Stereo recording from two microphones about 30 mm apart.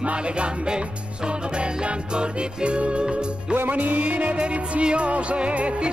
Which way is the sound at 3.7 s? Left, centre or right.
Right.